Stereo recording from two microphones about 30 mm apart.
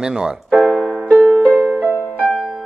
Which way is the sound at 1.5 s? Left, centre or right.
Right.